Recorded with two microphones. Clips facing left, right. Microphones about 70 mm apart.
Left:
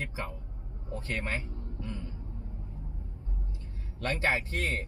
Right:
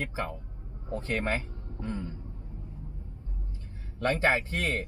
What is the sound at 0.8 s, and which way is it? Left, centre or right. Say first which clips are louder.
A man's voice: right 5 dB; right.